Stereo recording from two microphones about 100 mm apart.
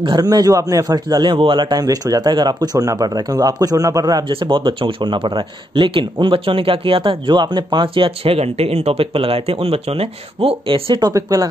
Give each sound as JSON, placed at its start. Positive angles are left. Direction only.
{"t": 0.2, "sound": "speech", "side_deg": -40}
{"t": 1.8, "sound": "speech", "side_deg": -35}
{"t": 4.3, "sound": "speech", "side_deg": -60}
{"t": 11.0, "sound": "speech", "side_deg": -35}